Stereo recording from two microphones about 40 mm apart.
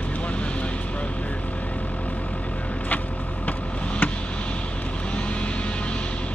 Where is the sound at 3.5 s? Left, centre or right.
Left.